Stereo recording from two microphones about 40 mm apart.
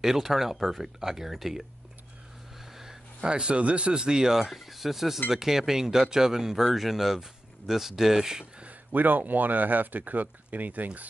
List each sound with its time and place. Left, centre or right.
0.0 s speech: centre
2.8 s a sound: centre
3.3 s speech: right
8.6 s speech: right